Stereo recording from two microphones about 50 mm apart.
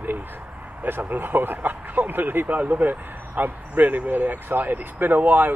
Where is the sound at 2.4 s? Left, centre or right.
Right.